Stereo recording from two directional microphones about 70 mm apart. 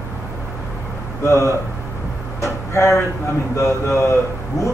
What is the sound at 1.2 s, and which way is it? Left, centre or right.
Speech, left.